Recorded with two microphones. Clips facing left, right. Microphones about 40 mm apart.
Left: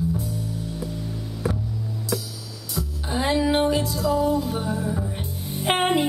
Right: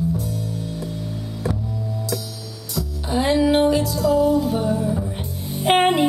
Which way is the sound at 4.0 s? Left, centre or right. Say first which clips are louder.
Right 5 dB; right.